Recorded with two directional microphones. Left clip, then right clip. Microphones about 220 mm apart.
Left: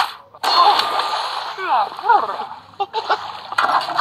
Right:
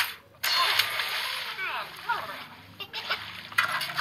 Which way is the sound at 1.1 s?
35° right (ahead or behind).